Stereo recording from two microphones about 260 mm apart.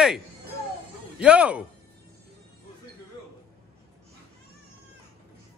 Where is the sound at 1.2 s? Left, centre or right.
Centre.